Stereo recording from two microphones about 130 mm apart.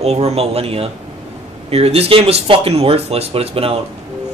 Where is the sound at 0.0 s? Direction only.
55° right (ahead or behind).